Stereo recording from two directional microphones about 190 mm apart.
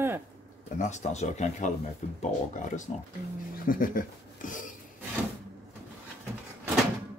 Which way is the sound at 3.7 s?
45° left (ahead or behind).